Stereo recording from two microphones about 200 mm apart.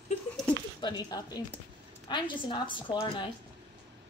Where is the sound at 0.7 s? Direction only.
20° left (ahead or behind).